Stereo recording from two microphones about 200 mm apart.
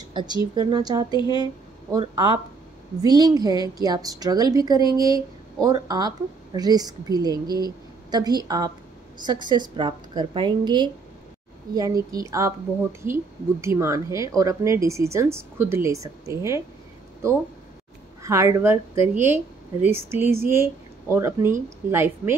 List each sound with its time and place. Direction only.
0.6 s speech: 20° right (ahead or behind)
1.1 s speech: 25° left (ahead or behind)
1.4 s a woman's voice: 20° right (ahead or behind)
18.2 s a woman's voice: 15° right (ahead or behind)